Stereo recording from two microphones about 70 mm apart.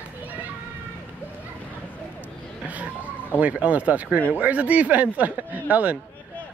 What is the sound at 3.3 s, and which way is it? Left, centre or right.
Speech, right.